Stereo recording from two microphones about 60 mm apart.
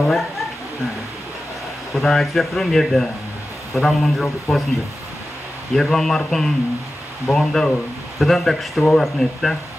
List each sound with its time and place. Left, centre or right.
2.0 s speech: centre
5.8 s a man's voice: centre